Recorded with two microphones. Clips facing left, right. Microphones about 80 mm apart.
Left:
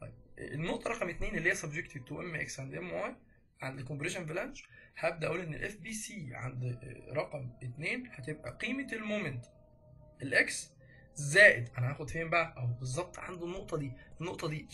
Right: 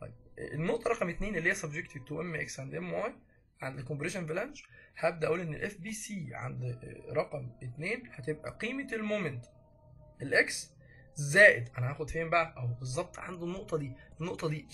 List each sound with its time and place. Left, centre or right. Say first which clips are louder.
0.0 s music: right 3 dB; centre
0.9 s speech: right 3 dB; centre
4.2 s speech: right 3 dB; centre
4.9 s speech: right 3 dB; centre
5.3 s speech: right 4 dB; centre
6.3 s speech: right 2 dB; centre
7.3 s speech: right 2 dB; centre
7.8 s speech: right 3 dB; centre
8.4 s speech: right 1 dB; centre
10.1 s speech: right 2 dB; centre
11.4 s speech: right 3 dB; centre